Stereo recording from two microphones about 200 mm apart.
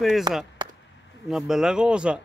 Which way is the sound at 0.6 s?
25° right (ahead or behind).